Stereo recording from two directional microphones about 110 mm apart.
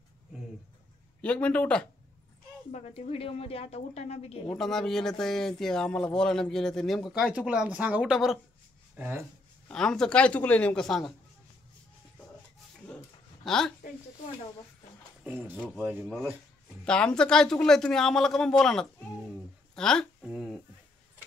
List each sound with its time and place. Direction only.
1.2 s a man's voice: 10° left (ahead or behind)
2.7 s a woman's voice: 75° left (ahead or behind)
4.5 s speech: 5° left (ahead or behind)
8.9 s speech: 15° right (ahead or behind)
9.7 s a man's voice: 5° left (ahead or behind)
13.5 s speech: 5° left (ahead or behind)
15.2 s speech: 20° right (ahead or behind)
15.5 s a man's voice: 5° left (ahead or behind)
15.8 s speech: 15° right (ahead or behind)
16.8 s speech: 10° left (ahead or behind)
20.2 s speech: 5° right (ahead or behind)